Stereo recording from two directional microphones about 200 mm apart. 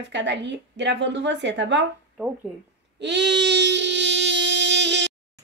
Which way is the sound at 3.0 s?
60° right (ahead or behind).